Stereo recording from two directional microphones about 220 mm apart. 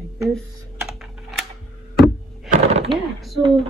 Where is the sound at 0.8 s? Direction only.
Centre (ahead or behind).